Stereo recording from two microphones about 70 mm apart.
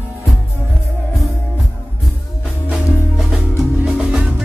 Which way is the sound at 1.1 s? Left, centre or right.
Centre.